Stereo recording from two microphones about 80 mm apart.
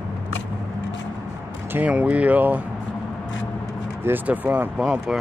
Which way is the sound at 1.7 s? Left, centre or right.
Centre.